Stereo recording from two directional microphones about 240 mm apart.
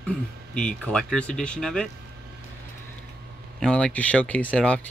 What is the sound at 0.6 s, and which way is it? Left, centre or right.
Speech, centre.